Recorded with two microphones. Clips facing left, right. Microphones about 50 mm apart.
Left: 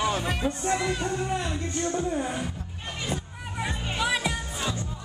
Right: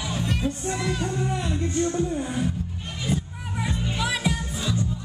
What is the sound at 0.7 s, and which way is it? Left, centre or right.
Music, centre.